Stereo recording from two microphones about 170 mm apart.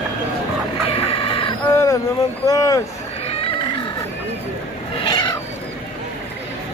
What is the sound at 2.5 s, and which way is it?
Speech, 20° left (ahead or behind).